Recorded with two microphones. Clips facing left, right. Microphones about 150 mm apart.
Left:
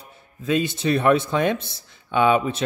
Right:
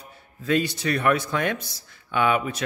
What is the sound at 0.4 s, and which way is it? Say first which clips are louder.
Speech: left 1 dB; 20° left (ahead or behind).